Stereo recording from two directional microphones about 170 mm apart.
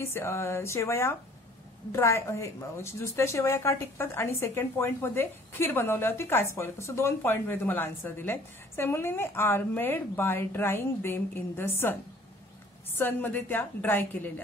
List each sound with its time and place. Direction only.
0.0 s a woman's voice: 15° left (ahead or behind)